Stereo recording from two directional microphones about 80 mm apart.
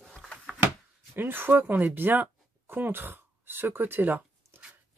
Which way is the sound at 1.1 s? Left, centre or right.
Right.